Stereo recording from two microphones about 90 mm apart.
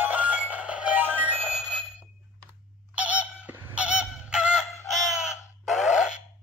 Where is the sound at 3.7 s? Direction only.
15° right (ahead or behind).